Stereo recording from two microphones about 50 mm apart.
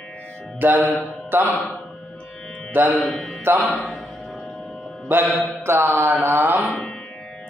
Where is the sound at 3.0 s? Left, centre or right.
Centre.